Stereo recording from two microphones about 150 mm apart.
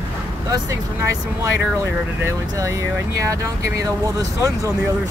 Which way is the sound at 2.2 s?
20° right (ahead or behind).